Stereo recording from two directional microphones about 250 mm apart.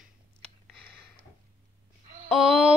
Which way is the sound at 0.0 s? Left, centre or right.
Centre.